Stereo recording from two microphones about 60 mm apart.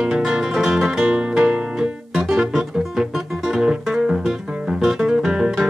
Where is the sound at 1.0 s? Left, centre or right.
Right.